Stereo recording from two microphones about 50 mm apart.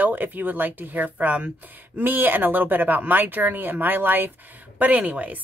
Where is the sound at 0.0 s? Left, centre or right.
Right.